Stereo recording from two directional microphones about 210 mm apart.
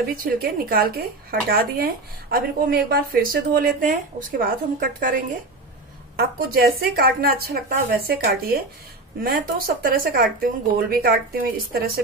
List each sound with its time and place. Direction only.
0.2 s a woman's voice: 45° right (ahead or behind)
9.8 s a woman's voice: 45° right (ahead or behind)